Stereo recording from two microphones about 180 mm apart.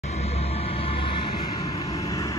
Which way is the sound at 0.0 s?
35° left (ahead or behind).